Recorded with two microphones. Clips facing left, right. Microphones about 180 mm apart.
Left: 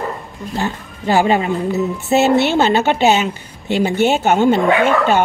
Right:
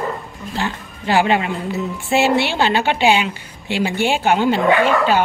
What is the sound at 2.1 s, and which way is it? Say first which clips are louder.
A woman's voice: left 3 dB; 40° left (ahead or behind).